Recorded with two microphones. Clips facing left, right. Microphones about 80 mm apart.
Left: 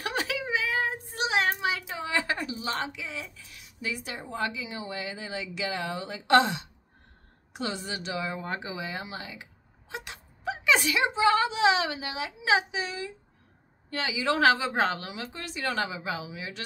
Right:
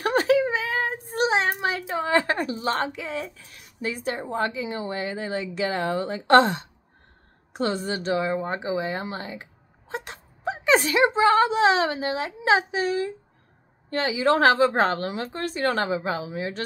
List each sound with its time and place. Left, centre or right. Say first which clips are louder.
0.0 s child singing: right 11 dB; right
1.6 s a woman's voice: right 5 dB; right